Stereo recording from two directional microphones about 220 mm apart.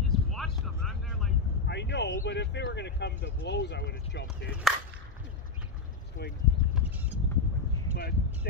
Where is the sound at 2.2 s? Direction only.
50° left (ahead or behind).